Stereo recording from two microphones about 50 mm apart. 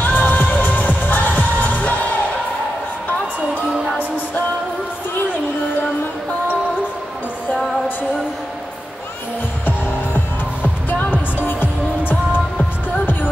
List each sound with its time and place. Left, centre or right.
0.0 s music: left
7.5 s music: centre
9.7 s music: left